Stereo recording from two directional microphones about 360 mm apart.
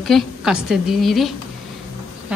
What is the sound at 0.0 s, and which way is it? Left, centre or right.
Speech, centre.